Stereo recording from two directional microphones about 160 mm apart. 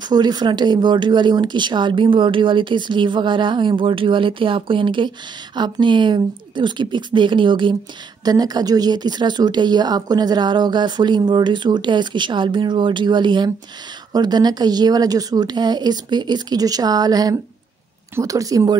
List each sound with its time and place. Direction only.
0.1 s speech: 25° right (ahead or behind)